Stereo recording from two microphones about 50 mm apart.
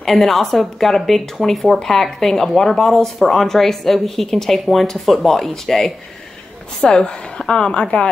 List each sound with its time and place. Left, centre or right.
0.0 s a woman's voice: centre